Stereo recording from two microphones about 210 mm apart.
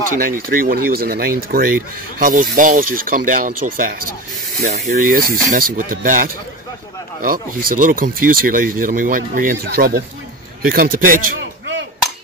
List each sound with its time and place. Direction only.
0.2 s speech: 40° right (ahead or behind)